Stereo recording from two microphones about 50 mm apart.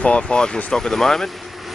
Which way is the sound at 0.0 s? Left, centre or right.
Left.